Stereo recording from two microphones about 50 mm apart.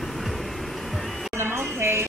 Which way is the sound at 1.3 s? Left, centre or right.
Right.